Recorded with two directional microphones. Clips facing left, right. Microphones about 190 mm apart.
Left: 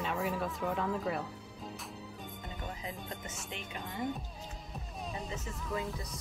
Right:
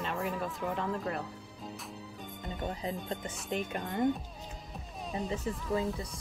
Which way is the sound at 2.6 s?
35° right (ahead or behind).